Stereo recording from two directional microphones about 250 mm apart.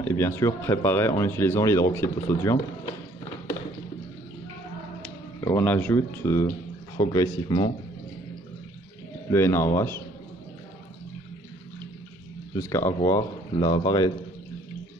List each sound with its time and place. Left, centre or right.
0.0 s speech: centre
5.4 s speech: centre
9.3 s speech: centre
12.5 s speech: centre